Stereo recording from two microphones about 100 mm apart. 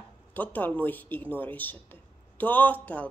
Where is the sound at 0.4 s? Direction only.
15° left (ahead or behind).